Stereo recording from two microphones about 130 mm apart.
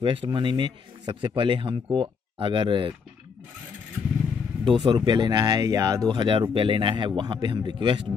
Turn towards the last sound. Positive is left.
turn(degrees=-40)  # may be behind; listen again after turning